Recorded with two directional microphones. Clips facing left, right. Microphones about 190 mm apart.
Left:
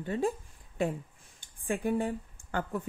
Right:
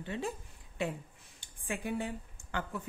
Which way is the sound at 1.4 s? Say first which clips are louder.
Left 6 dB; 50° left (ahead or behind).